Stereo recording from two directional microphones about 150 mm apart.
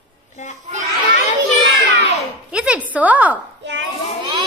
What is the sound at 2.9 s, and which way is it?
Speech, 10° right (ahead or behind).